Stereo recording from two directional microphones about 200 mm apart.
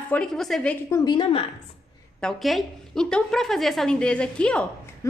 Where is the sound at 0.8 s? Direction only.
20° left (ahead or behind).